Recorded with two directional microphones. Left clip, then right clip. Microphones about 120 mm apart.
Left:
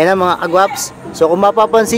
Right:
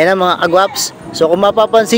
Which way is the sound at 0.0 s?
25° right (ahead or behind).